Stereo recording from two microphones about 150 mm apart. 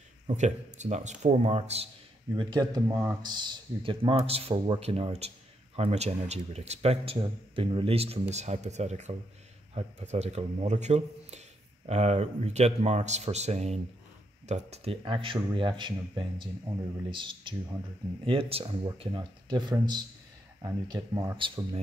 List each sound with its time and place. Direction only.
0.3 s speech: 50° right (ahead or behind)
2.3 s speech: 30° right (ahead or behind)
2.9 s speech: 15° right (ahead or behind)
3.2 s speech: 30° right (ahead or behind)